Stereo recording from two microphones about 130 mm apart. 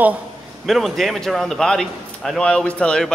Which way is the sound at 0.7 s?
Centre (ahead or behind).